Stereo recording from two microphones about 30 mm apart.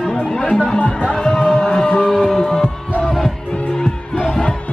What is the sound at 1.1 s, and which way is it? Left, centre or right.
Music, left.